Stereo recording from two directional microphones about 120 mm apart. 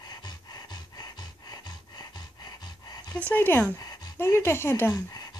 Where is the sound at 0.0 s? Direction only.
35° left (ahead or behind).